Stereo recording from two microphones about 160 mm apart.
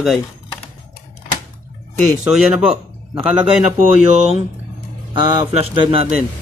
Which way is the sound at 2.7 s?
35° right (ahead or behind).